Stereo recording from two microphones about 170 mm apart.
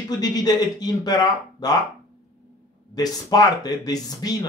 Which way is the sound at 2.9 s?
20° left (ahead or behind).